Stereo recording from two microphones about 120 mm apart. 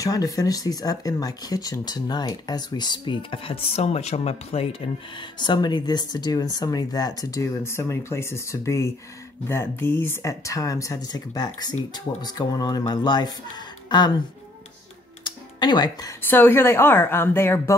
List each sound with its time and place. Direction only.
0.0 s speech: 30° left (ahead or behind)
15.2 s music: 40° left (ahead or behind)
16.2 s a woman's voice: 15° left (ahead or behind)